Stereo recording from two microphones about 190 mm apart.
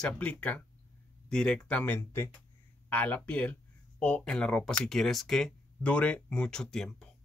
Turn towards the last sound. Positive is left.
turn(degrees=5)  # may be behind; listen again after turning